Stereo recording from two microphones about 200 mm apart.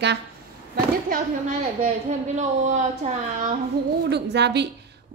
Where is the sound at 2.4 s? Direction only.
35° right (ahead or behind).